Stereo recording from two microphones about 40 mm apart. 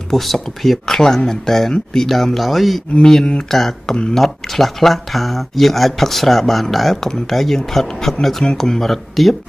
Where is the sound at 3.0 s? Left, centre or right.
Centre.